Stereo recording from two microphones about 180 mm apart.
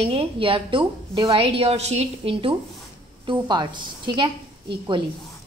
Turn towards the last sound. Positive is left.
turn(degrees=-25)  # may be behind; listen again after turning